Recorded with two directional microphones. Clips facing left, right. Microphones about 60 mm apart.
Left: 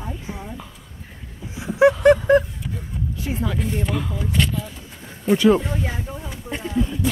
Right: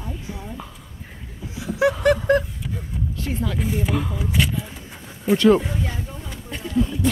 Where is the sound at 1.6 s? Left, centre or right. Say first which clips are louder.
Left 5 dB; left.